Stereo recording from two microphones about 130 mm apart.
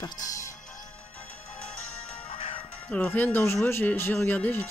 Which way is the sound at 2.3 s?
50° left (ahead or behind).